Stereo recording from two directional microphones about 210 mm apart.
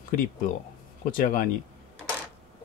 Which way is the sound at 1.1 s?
40° left (ahead or behind).